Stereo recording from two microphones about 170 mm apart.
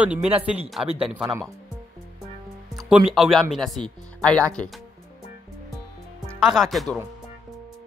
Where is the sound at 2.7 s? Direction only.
Centre (ahead or behind).